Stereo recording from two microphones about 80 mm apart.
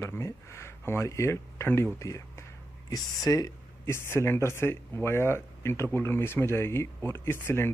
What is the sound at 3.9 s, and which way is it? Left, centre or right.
Speech, left.